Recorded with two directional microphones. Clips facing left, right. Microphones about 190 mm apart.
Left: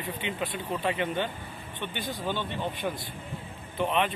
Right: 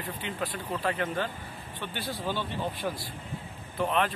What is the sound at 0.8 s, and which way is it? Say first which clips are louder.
Speech: left 1 dB; 10° left (ahead or behind).